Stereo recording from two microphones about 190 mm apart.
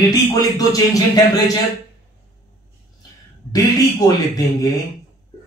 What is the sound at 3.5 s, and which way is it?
A man's voice, 20° left (ahead or behind).